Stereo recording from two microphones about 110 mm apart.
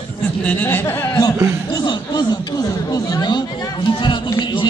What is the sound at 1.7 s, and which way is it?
Speech, 40° left (ahead or behind).